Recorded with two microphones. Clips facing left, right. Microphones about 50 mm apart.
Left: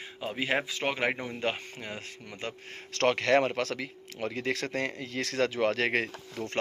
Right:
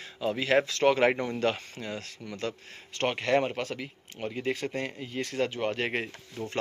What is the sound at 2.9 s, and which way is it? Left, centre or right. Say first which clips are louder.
Speech: left 2 dB; left.